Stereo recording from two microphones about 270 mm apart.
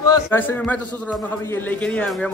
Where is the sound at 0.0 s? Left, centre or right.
Centre.